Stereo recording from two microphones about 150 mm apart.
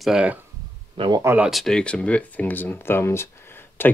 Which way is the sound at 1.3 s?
Centre (ahead or behind).